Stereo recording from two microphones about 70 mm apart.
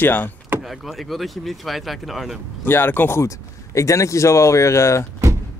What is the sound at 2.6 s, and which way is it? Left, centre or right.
Speech, left.